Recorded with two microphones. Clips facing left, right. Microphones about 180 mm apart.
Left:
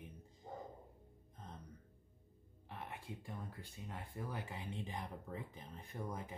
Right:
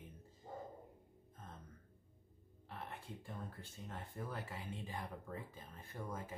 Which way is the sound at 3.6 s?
15° left (ahead or behind).